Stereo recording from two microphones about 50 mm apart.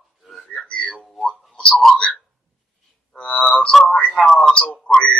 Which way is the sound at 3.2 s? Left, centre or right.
Left.